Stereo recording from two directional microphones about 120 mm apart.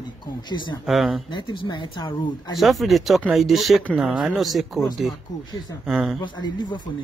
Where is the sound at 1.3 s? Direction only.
40° left (ahead or behind).